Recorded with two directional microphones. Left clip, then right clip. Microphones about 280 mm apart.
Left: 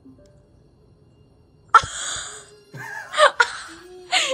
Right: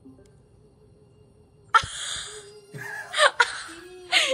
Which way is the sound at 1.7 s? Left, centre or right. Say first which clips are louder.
Left 6 dB; left.